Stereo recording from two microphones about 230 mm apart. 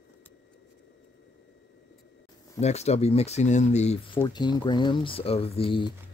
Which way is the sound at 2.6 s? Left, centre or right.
Left.